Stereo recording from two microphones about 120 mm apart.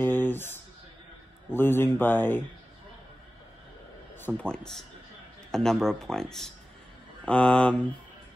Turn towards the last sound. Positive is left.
turn(degrees=10)  # may be behind; listen again after turning